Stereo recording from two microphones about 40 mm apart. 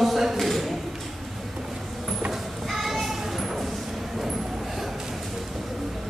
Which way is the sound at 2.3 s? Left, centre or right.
Centre.